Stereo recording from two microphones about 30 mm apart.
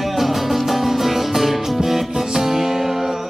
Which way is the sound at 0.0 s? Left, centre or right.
Centre.